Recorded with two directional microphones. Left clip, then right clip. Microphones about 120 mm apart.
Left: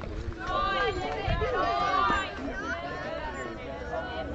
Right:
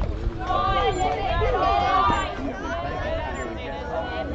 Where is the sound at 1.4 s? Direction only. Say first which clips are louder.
Right 5 dB; 30° left (ahead or behind).